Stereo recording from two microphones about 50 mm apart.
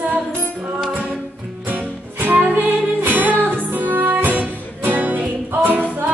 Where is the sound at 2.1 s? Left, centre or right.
Right.